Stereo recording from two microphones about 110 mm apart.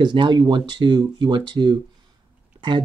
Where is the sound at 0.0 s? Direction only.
45° right (ahead or behind).